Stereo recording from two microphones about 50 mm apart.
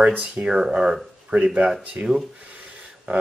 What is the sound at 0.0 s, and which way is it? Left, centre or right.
Speech, right.